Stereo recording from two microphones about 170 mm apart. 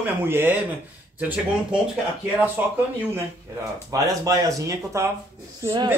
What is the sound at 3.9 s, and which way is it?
Speech, 20° right (ahead or behind).